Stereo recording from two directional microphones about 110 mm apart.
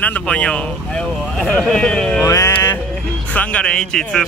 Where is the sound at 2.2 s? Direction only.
30° left (ahead or behind).